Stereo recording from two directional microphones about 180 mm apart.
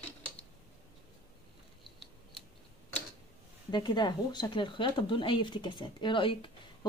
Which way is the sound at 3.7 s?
25° left (ahead or behind).